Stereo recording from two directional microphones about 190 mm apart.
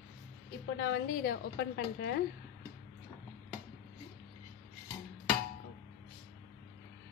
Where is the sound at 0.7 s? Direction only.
60° left (ahead or behind).